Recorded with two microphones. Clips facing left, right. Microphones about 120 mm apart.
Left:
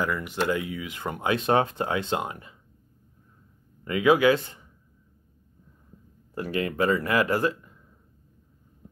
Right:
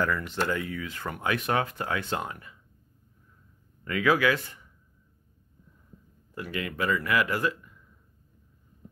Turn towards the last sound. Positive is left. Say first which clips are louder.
# left 4 dB
turn(degrees=30)  # may be behind; listen again after turning